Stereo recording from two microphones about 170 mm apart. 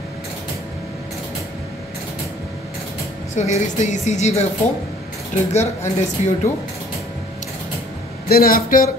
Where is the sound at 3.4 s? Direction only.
40° left (ahead or behind).